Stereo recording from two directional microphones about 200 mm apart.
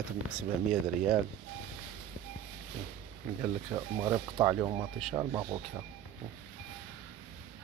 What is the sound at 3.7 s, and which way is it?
Speech, 15° right (ahead or behind).